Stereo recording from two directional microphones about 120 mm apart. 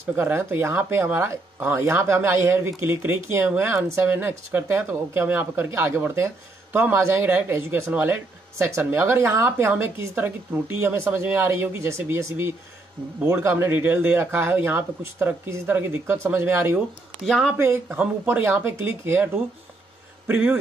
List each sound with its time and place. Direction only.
0.0 s speech: 20° right (ahead or behind)
17.2 s speech: centre (ahead or behind)
17.6 s speech: 20° right (ahead or behind)
20.2 s speech: 15° right (ahead or behind)